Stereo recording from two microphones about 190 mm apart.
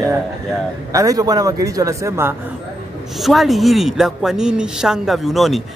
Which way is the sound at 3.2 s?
Centre (ahead or behind).